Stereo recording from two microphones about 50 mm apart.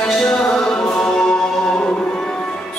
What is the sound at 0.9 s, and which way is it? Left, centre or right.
A capella, centre.